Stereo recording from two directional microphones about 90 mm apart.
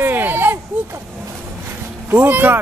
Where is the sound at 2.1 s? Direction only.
20° right (ahead or behind).